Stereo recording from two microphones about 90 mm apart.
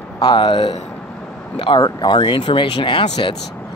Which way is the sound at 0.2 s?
60° left (ahead or behind).